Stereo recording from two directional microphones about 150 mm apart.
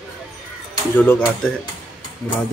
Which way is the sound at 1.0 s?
10° left (ahead or behind).